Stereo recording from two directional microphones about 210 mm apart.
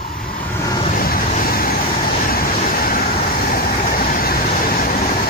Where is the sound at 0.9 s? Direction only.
40° left (ahead or behind).